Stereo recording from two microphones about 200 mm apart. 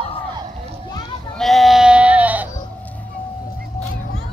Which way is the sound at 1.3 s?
Centre (ahead or behind).